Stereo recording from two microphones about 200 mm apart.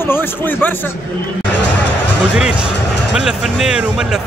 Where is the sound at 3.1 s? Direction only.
5° right (ahead or behind).